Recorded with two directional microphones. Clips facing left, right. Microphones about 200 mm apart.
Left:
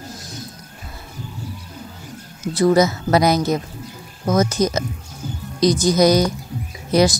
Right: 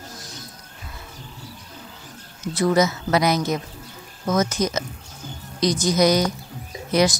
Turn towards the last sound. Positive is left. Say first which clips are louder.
# left 3 dB
turn(degrees=35)  # may be behind; listen again after turning